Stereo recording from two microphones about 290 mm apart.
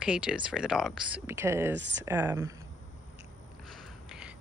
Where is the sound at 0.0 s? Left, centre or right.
Centre.